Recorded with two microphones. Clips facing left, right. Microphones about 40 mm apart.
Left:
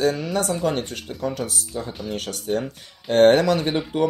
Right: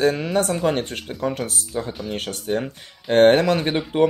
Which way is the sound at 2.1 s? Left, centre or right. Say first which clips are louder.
Even; right.